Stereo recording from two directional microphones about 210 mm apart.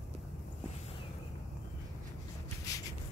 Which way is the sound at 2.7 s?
15° left (ahead or behind).